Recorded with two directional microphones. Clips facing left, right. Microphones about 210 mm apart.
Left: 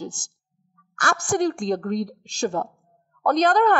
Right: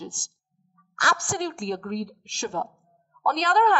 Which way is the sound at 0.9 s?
45° left (ahead or behind).